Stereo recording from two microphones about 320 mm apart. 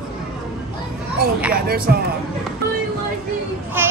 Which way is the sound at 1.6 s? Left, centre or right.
Right.